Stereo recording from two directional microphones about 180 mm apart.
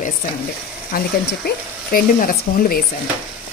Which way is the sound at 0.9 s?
55° left (ahead or behind).